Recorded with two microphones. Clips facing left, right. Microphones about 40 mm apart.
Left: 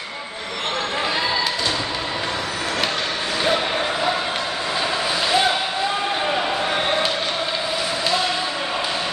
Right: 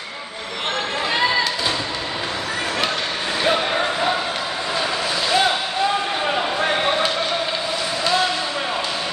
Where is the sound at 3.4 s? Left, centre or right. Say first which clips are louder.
Right 2 dB; centre.